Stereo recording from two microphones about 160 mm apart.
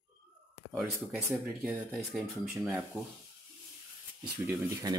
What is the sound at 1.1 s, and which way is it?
Speech, 5° right (ahead or behind).